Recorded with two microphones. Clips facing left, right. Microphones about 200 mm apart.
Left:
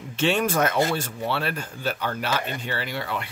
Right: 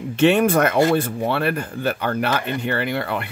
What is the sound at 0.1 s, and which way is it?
Speech, 60° right (ahead or behind).